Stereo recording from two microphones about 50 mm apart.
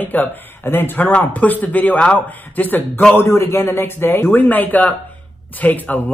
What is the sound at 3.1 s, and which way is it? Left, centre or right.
A man's voice, left.